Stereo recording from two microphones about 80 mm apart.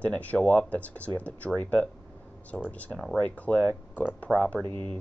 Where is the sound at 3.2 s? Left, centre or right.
Centre.